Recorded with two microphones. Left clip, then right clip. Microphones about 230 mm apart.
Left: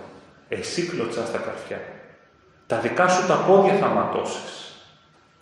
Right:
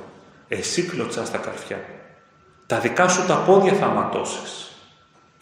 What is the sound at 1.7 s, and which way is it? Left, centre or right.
A man's voice, right.